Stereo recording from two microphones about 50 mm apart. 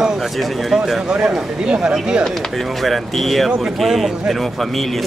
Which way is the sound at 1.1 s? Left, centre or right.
Right.